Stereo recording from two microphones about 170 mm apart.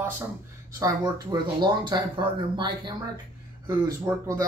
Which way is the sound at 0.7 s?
20° right (ahead or behind).